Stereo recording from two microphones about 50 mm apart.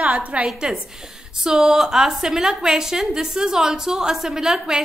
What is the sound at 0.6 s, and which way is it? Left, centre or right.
A woman's voice, centre.